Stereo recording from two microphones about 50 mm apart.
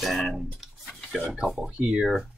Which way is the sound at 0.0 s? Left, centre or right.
Centre.